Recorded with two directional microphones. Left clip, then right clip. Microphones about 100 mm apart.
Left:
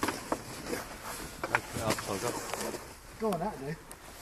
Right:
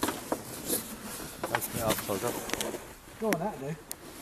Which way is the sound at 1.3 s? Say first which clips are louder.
Even; 60° right (ahead or behind).